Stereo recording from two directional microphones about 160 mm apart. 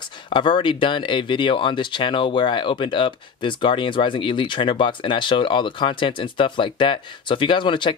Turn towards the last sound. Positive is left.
turn(degrees=30)  # may be behind; listen again after turning